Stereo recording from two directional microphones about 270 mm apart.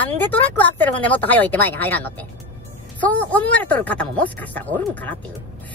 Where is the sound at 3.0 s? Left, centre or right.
Centre.